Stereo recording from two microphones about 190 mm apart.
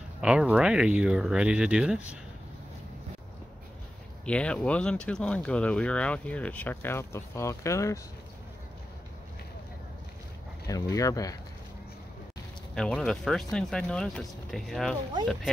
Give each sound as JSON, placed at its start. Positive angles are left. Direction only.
{"t": 0.2, "sound": "speech", "side_deg": -5}
{"t": 4.3, "sound": "speech", "side_deg": 5}
{"t": 10.7, "sound": "speech", "side_deg": 15}
{"t": 12.7, "sound": "speech", "side_deg": 5}